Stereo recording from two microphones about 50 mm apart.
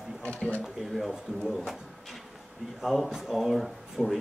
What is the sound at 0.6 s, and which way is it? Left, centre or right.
Speech, centre.